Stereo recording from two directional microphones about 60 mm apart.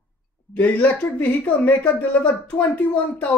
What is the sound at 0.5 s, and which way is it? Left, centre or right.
Speech, left.